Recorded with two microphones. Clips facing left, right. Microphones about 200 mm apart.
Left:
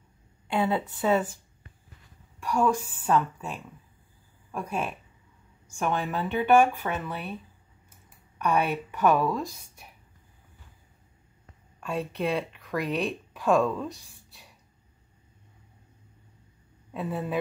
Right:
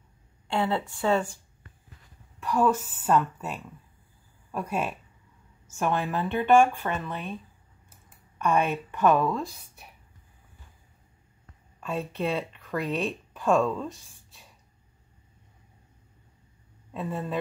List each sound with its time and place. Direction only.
0.5 s speech: 15° left (ahead or behind)
2.4 s a woman's voice: centre (ahead or behind)
4.5 s speech: 5° right (ahead or behind)
6.3 s speech: 10° left (ahead or behind)
8.5 s speech: 10° left (ahead or behind)
9.1 s speech: centre (ahead or behind)
11.8 s speech: centre (ahead or behind)
16.9 s speech: 5° left (ahead or behind)